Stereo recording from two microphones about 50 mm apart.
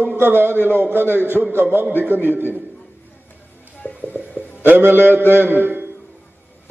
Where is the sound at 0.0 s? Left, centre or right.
Right.